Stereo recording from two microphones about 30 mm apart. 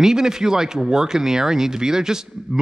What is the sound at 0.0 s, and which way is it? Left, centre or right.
Speech, centre.